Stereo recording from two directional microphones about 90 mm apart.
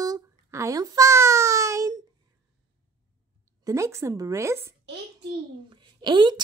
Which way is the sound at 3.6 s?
35° right (ahead or behind).